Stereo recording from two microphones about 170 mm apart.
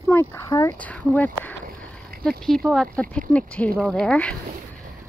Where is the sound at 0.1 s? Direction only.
15° left (ahead or behind).